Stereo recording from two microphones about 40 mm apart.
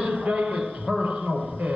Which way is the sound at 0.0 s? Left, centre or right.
Right.